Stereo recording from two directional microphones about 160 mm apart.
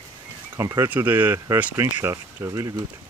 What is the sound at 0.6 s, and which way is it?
Speech, 20° right (ahead or behind).